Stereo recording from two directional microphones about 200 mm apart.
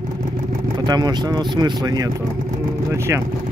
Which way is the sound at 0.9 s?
20° right (ahead or behind).